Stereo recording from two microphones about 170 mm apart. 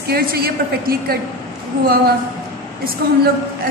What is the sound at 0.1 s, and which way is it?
A woman's voice, 65° right (ahead or behind).